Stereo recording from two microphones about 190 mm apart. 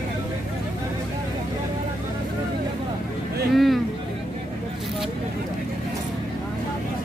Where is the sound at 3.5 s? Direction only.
Centre (ahead or behind).